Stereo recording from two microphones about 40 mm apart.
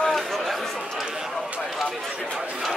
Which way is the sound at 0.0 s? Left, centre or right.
Centre.